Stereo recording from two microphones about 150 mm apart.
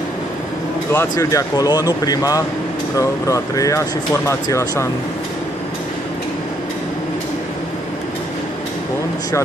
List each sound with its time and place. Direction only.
0.9 s speech: 25° left (ahead or behind)